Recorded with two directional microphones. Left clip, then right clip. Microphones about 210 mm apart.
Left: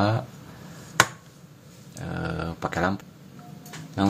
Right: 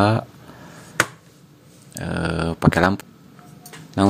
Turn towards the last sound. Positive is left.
turn(degrees=-50)  # may be behind; listen again after turning